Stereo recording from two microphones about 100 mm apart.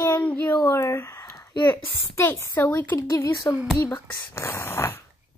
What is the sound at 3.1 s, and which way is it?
A child's voice, 35° left (ahead or behind).